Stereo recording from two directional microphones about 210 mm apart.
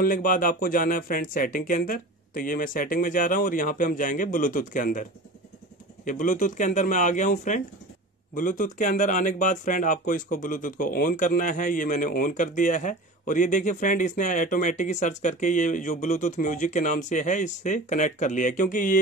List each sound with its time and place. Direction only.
0.0 s speech: 40° left (ahead or behind)
6.0 s speech: 40° left (ahead or behind)